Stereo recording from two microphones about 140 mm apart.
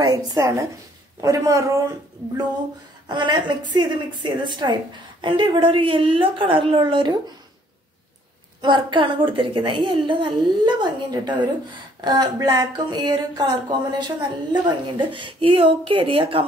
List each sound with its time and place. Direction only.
0.0 s a woman's voice: 30° right (ahead or behind)
3.1 s speech: 35° right (ahead or behind)
8.5 s speech: 35° right (ahead or behind)